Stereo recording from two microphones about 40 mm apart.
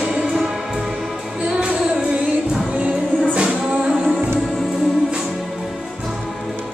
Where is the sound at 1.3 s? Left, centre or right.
Centre.